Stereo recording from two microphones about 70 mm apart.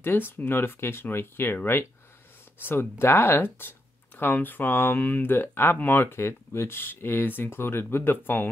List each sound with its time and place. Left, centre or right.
0.0 s speech: left